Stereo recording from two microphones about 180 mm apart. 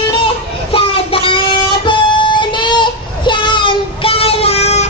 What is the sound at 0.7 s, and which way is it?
Music, 30° left (ahead or behind).